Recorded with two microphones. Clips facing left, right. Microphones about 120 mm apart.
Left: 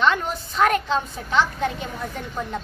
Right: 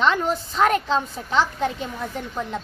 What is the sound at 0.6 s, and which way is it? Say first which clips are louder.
Speech: even; 30° right (ahead or behind).